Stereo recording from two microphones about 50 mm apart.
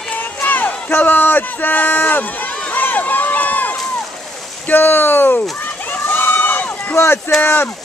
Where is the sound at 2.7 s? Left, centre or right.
Left.